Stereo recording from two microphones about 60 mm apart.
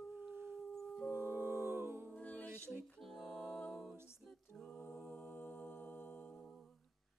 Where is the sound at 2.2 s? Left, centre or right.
Left.